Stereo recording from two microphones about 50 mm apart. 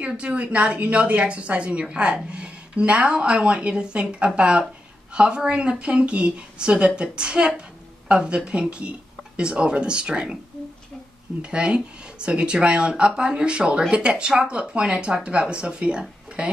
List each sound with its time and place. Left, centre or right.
0.2 s speech: right
11.4 s speech: right